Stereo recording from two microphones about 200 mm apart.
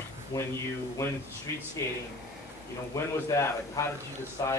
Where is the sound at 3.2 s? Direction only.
15° left (ahead or behind).